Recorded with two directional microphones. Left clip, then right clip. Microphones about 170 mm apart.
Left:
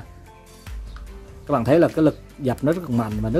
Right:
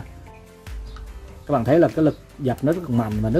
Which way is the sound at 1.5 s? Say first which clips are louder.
Even; 20° left (ahead or behind).